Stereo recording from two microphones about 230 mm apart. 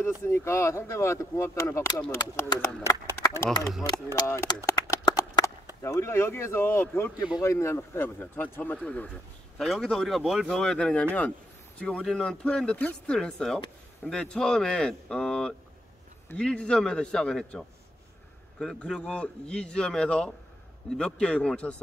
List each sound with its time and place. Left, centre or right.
0.0 s speech: centre
4.6 s a sound: centre
5.8 s speech: centre